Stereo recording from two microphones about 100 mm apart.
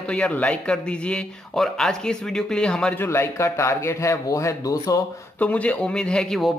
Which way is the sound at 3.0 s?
25° left (ahead or behind).